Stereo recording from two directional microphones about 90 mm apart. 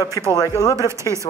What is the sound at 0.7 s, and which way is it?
Speech, 35° right (ahead or behind).